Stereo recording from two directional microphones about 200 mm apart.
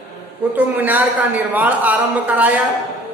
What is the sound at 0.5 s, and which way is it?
A man's voice, 10° right (ahead or behind).